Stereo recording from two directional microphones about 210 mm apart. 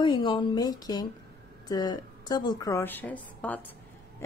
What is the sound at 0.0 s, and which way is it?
A woman's voice, 20° left (ahead or behind).